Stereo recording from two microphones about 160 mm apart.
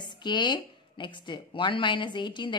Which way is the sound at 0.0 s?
30° left (ahead or behind).